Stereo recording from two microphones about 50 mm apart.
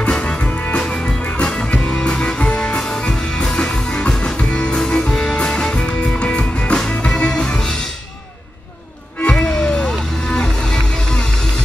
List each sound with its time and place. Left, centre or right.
0.0 s music: centre
9.2 s music: centre